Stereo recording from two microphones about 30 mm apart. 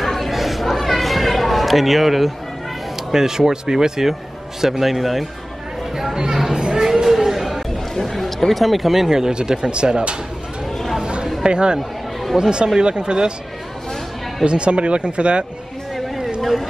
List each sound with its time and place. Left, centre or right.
0.0 s a sound: centre
3.1 s a man's voice: centre
5.9 s chatter: centre
6.5 s a sound: centre
7.1 s chatter: centre
7.9 s speech: centre
9.3 s speech: right
11.4 s speech: right
14.4 s speech: right
16.3 s speech: centre